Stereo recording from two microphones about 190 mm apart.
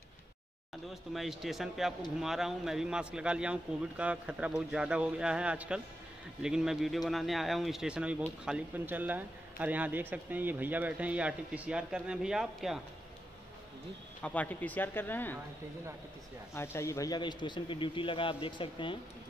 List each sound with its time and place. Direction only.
1.1 s a man's voice: centre (ahead or behind)
14.2 s speech: 10° left (ahead or behind)
16.5 s speech: 15° left (ahead or behind)